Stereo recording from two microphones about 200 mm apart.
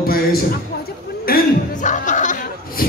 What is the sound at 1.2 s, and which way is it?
Chuckle, 45° left (ahead or behind).